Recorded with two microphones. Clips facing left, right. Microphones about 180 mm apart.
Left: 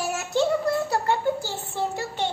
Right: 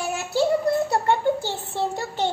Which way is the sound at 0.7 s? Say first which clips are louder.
Right 3 dB; 25° right (ahead or behind).